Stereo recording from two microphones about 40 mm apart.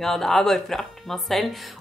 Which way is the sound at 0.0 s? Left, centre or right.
Centre.